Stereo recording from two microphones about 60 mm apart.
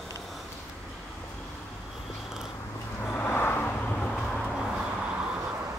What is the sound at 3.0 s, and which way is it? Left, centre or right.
Vehicle, left.